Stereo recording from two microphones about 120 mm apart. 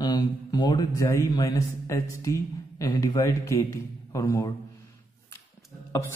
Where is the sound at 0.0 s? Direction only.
35° left (ahead or behind).